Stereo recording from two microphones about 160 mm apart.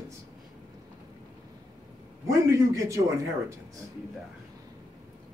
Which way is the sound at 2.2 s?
20° right (ahead or behind).